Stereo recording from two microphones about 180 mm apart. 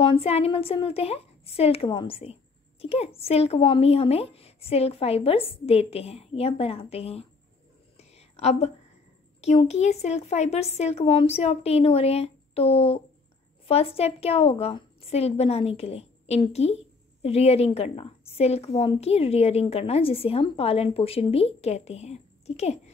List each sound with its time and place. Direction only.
0.0 s a woman's voice: 30° left (ahead or behind)
8.0 s a sound: 35° left (ahead or behind)
9.4 s a woman's voice: 35° left (ahead or behind)